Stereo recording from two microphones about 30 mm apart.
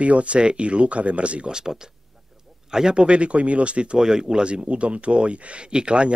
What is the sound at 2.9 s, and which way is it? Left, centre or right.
Speech, right.